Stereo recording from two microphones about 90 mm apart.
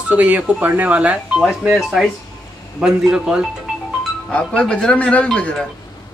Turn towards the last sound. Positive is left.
turn(degrees=10)  # may be behind; listen again after turning